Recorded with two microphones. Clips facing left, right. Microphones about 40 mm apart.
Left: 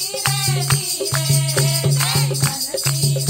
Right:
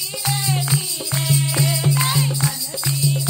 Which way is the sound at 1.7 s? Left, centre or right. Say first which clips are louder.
Right 1 dB; right.